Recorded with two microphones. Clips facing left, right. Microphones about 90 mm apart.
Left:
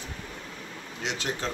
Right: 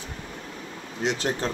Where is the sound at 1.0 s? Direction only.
45° right (ahead or behind).